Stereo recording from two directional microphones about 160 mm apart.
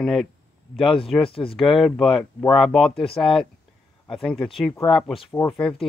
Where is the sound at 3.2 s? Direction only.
30° left (ahead or behind).